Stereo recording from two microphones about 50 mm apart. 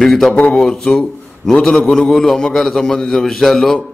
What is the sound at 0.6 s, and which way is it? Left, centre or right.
A man's voice, centre.